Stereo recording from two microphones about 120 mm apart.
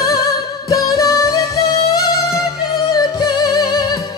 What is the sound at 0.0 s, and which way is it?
Music, 30° left (ahead or behind).